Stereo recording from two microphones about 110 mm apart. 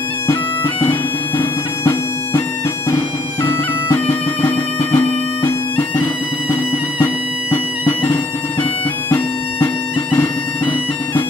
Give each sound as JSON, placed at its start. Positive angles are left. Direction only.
{"t": 0.8, "sound": "music", "side_deg": 20}
{"t": 3.4, "sound": "bagpipes", "side_deg": 20}